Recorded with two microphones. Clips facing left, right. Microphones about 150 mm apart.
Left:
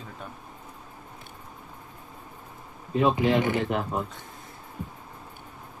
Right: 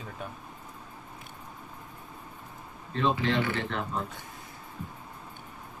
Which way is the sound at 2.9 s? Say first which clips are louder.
Left 5 dB; 15° left (ahead or behind).